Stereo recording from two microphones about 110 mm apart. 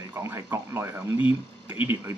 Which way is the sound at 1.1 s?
50° left (ahead or behind).